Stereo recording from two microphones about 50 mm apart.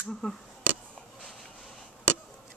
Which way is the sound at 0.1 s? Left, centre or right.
Centre.